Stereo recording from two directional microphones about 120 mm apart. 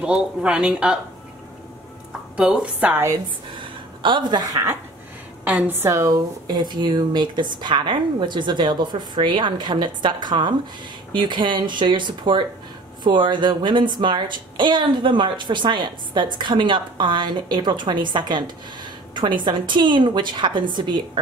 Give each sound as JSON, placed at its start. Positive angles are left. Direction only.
{"t": 0.0, "sound": "speech", "side_deg": -10}
{"t": 2.3, "sound": "speech", "side_deg": -5}
{"t": 4.0, "sound": "a woman's voice", "side_deg": -40}
{"t": 5.4, "sound": "a woman's voice", "side_deg": -15}